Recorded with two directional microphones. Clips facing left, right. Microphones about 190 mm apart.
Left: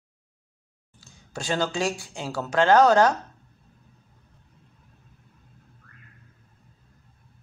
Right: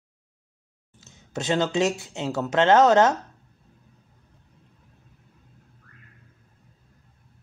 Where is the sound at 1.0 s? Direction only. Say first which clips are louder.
Right 4 dB; 20° right (ahead or behind).